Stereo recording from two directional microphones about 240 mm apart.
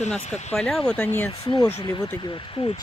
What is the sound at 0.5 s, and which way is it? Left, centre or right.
Speech, centre.